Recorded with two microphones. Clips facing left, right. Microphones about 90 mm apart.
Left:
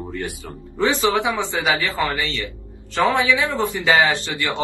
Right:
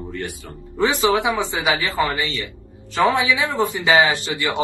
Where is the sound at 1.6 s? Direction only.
20° right (ahead or behind).